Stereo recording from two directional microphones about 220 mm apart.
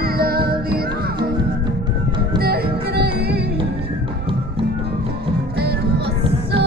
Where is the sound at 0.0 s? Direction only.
45° right (ahead or behind).